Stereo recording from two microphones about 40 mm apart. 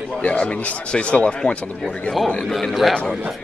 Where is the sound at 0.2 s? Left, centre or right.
Left.